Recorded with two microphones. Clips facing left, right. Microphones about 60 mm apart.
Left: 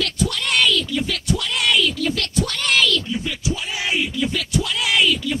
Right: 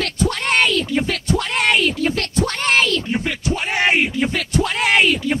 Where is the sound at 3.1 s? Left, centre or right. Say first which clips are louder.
Right 3 dB; right.